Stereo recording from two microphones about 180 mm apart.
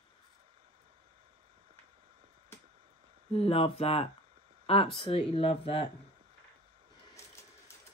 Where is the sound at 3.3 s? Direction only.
35° left (ahead or behind).